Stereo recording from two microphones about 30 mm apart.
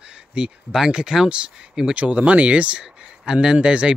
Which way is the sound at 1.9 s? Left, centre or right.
Right.